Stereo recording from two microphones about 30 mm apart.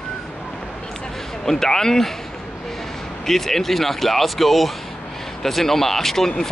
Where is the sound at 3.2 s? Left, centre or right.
Centre.